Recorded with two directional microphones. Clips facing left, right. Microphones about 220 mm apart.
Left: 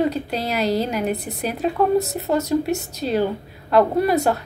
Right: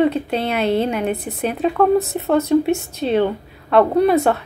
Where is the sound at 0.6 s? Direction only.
35° left (ahead or behind).